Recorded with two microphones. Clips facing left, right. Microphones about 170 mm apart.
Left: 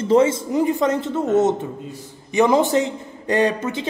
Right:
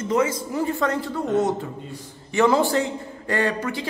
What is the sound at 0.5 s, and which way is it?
Speech, 15° left (ahead or behind).